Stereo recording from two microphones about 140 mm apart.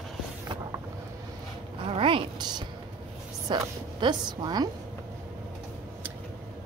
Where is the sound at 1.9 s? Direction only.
40° right (ahead or behind).